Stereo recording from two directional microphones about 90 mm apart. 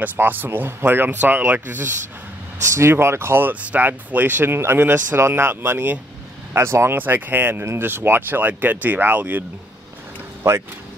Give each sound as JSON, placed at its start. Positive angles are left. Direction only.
{"t": 0.0, "sound": "speech", "side_deg": -20}
{"t": 10.4, "sound": "speech", "side_deg": -25}